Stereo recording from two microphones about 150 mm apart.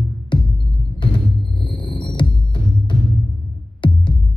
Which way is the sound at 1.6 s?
35° left (ahead or behind).